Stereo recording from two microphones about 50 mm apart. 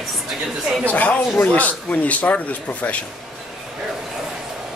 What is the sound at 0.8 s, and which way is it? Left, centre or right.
Speech, left.